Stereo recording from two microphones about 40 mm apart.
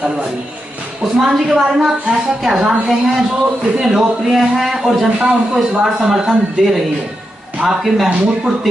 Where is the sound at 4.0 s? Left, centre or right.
Centre.